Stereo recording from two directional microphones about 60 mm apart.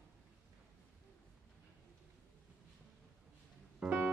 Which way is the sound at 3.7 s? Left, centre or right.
Centre.